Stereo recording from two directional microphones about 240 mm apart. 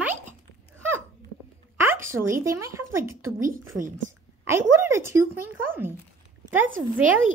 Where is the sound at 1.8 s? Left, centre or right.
Centre.